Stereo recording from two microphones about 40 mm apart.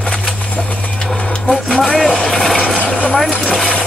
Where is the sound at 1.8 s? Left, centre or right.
Centre.